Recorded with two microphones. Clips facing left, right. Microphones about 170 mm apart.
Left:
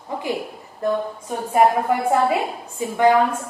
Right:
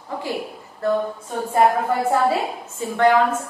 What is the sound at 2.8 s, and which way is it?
Speech, 10° left (ahead or behind).